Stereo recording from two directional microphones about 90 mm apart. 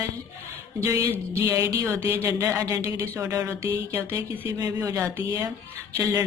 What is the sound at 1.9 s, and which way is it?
Speech, 30° right (ahead or behind).